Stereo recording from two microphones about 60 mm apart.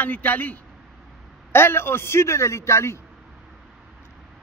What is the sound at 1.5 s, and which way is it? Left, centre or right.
A man's voice, left.